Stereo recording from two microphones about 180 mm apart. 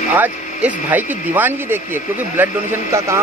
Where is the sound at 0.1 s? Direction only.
10° right (ahead or behind).